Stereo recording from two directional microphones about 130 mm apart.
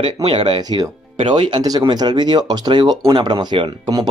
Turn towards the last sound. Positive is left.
turn(degrees=-30)  # may be behind; listen again after turning